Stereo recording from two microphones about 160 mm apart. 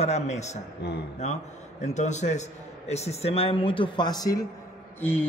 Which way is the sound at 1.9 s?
45° left (ahead or behind).